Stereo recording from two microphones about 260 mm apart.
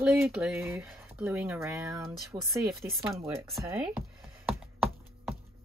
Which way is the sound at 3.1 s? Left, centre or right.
Centre.